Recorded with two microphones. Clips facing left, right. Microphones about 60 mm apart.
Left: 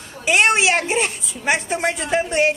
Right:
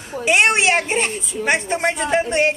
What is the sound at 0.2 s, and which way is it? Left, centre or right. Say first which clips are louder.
A woman's voice: even; centre.